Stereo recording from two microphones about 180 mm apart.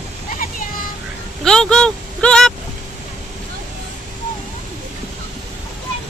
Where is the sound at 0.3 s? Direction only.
50° left (ahead or behind).